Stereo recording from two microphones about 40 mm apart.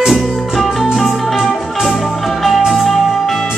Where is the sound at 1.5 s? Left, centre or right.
Centre.